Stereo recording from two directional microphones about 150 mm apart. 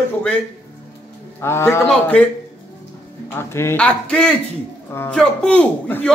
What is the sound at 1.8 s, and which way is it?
Speech, 10° left (ahead or behind).